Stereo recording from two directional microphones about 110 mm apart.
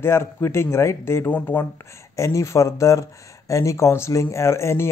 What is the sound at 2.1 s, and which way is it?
Speech, 25° left (ahead or behind).